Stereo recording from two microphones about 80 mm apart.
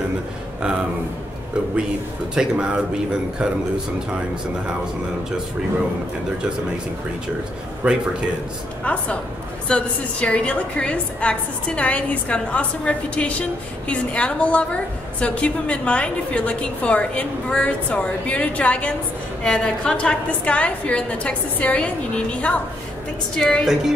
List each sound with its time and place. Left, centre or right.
0.6 s speech: centre
2.3 s speech: centre
7.8 s speech: centre
8.8 s a woman's voice: centre